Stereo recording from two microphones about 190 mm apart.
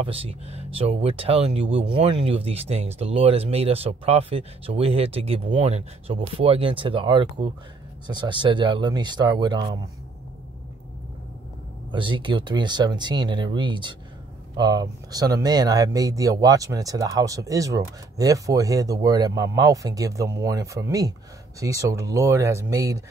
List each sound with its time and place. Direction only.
0.0 s speech: 30° right (ahead or behind)
11.9 s speech: 25° right (ahead or behind)